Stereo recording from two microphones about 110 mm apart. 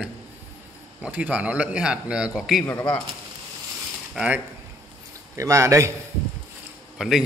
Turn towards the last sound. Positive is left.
turn(degrees=-5)  # may be behind; listen again after turning